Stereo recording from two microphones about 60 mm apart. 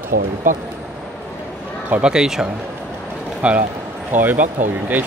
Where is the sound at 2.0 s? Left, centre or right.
Centre.